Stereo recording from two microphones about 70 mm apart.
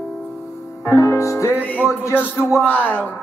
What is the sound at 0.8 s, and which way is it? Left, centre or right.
Music, left.